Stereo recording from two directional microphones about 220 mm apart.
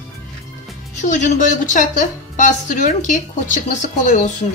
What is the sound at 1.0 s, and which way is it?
A woman's voice, 35° left (ahead or behind).